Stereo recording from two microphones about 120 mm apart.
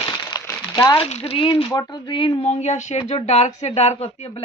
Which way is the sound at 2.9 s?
55° left (ahead or behind).